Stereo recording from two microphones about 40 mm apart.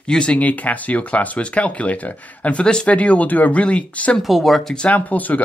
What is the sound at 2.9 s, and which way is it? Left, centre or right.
Speech, left.